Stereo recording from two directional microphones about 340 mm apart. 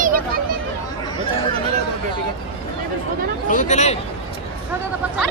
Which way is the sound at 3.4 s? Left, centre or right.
Left.